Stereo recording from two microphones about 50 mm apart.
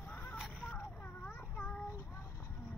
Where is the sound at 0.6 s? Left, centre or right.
Left.